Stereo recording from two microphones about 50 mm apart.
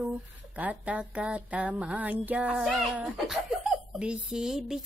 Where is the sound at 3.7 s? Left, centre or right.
Right.